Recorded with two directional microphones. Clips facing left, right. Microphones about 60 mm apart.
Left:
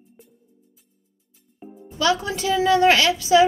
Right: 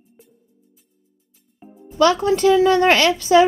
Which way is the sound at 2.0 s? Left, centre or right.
Right.